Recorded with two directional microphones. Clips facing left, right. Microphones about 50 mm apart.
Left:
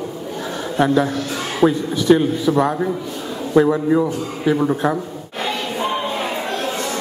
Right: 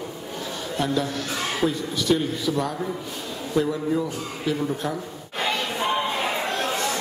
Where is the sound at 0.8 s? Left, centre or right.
Left.